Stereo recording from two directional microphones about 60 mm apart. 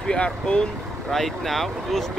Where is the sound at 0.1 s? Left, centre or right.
Centre.